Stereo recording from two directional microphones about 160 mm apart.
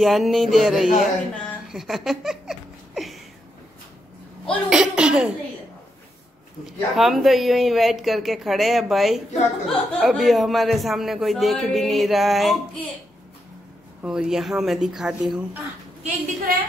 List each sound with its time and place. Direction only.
0.0 s speech: centre (ahead or behind)
1.7 s a sound: centre (ahead or behind)
4.6 s a sound: 5° right (ahead or behind)
6.6 s speech: centre (ahead or behind)
14.0 s speech: 5° right (ahead or behind)
16.5 s a woman's voice: 60° right (ahead or behind)